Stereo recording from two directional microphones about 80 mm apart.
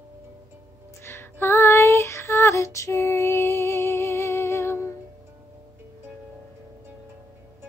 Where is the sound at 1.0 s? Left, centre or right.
Left.